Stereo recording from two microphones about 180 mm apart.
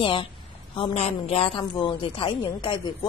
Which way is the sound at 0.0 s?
30° left (ahead or behind).